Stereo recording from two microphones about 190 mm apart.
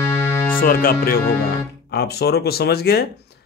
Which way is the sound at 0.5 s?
50° left (ahead or behind).